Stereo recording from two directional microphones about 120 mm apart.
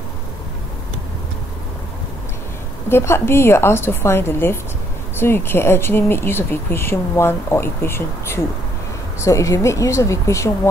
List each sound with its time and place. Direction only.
2.9 s speech: 20° left (ahead or behind)